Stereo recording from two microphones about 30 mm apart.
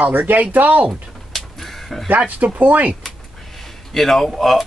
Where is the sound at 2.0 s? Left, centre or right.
Right.